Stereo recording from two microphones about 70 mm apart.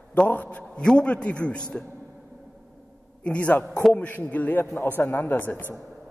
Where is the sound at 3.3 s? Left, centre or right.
Left.